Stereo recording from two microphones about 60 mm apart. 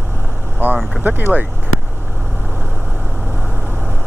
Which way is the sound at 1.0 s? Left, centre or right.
Right.